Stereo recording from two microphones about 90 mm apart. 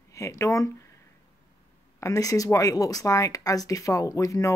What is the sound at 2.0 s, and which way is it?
Speech, 35° left (ahead or behind).